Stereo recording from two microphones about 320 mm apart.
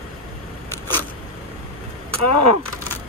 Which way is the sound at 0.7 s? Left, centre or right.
Centre.